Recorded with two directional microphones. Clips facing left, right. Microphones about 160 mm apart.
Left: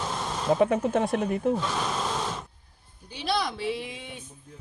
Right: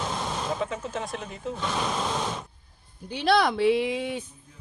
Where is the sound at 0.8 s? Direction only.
55° left (ahead or behind).